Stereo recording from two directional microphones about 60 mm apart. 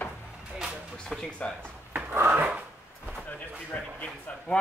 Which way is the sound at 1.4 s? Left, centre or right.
Centre.